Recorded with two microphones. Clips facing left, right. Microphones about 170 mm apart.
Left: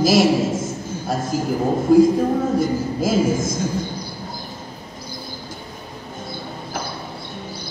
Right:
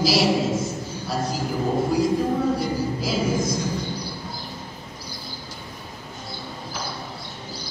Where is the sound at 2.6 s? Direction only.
50° left (ahead or behind).